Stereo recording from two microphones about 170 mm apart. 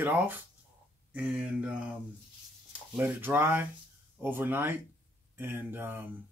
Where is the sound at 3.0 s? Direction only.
10° right (ahead or behind).